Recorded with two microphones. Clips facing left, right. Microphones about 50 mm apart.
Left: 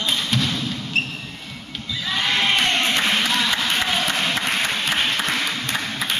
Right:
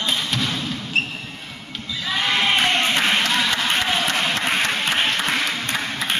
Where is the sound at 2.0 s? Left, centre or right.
Centre.